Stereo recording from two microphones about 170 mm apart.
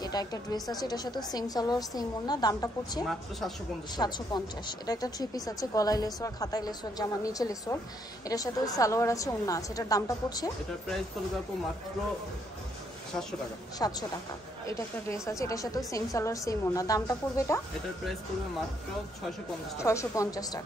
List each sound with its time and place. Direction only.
0.0 s speech: 20° left (ahead or behind)
3.1 s speech: centre (ahead or behind)
3.9 s speech: 25° left (ahead or behind)
13.7 s speech: 20° left (ahead or behind)
15.0 s speech: 15° left (ahead or behind)
19.8 s speech: 15° left (ahead or behind)